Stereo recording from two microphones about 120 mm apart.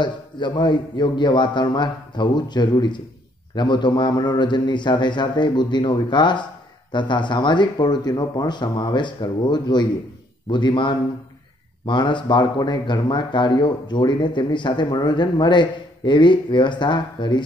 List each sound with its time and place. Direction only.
0.0 s speech: 40° left (ahead or behind)